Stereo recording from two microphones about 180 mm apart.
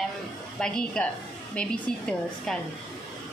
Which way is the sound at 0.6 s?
5° left (ahead or behind).